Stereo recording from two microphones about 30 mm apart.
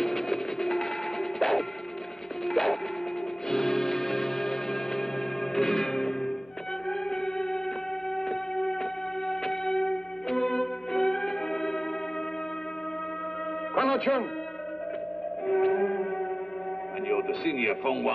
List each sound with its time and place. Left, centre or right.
0.0 s music: centre
8.2 s a sound: centre
9.3 s music: centre
13.7 s music: centre
15.4 s music: centre